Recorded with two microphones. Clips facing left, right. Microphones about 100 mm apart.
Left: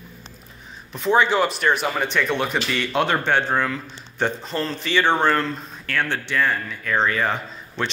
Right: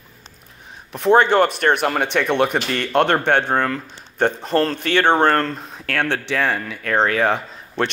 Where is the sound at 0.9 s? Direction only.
55° right (ahead or behind).